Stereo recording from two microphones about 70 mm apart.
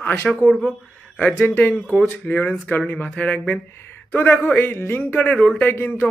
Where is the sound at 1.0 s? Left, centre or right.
Centre.